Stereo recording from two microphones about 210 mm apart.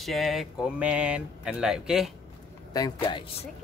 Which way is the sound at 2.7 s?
20° left (ahead or behind).